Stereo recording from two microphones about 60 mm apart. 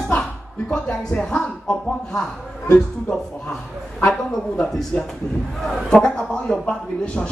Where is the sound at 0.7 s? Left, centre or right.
Centre.